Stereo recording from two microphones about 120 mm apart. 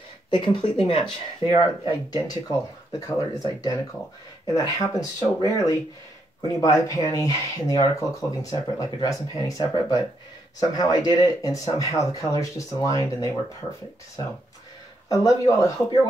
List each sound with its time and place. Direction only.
0.3 s speech: 45° left (ahead or behind)
1.9 s speech: 30° left (ahead or behind)
15.0 s speech: 25° left (ahead or behind)